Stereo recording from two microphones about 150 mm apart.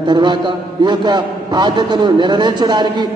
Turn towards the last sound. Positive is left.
turn(degrees=-30)  # may be behind; listen again after turning